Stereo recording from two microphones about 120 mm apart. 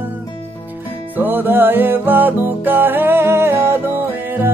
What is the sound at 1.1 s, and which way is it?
Music, 15° right (ahead or behind).